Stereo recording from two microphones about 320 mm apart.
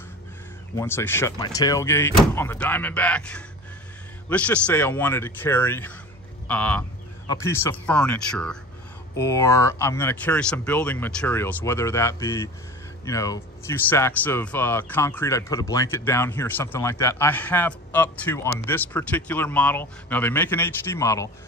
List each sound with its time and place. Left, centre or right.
0.7 s speech: centre
6.4 s sheep: centre
7.2 s speech: centre